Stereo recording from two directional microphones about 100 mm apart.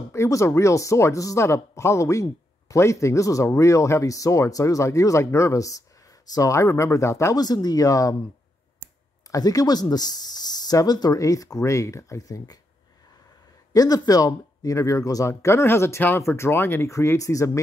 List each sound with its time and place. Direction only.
0.1 s speech: 30° left (ahead or behind)
7.3 s speech: 40° left (ahead or behind)
9.3 s speech: 35° left (ahead or behind)
13.7 s speech: 40° left (ahead or behind)